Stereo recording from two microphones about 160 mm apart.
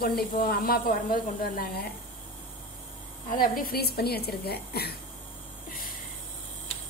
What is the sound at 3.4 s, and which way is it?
Speech, 65° left (ahead or behind).